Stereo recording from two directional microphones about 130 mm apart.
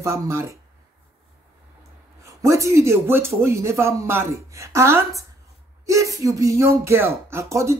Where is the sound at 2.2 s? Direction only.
25° right (ahead or behind).